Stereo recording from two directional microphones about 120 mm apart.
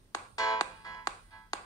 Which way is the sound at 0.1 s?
30° left (ahead or behind).